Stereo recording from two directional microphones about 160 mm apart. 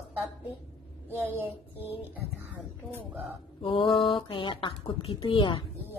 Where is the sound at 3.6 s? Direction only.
30° left (ahead or behind).